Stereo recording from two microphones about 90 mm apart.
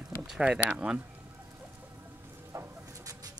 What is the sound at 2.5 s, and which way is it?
Chicken, 35° right (ahead or behind).